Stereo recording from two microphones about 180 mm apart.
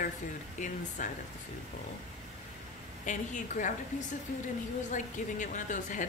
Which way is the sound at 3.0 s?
45° left (ahead or behind).